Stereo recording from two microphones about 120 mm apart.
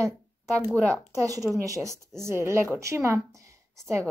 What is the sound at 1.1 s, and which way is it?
A woman's voice, 30° right (ahead or behind).